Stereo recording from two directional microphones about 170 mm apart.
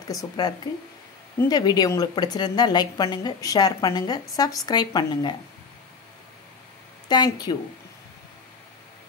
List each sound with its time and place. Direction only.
0.1 s a woman's voice: 20° left (ahead or behind)
7.1 s a woman's voice: 25° left (ahead or behind)